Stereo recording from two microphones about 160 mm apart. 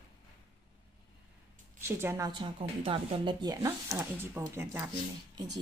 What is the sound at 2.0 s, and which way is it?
Speech, 20° right (ahead or behind).